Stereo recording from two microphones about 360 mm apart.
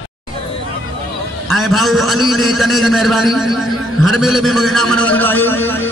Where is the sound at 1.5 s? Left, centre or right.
Centre.